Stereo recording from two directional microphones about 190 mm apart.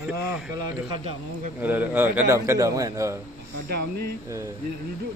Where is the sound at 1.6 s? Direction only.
10° right (ahead or behind).